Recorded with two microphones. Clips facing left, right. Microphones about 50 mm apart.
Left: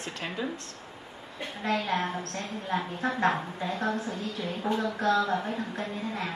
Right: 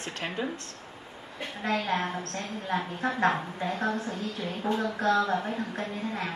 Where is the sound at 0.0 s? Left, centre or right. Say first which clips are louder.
Right 1 dB; right.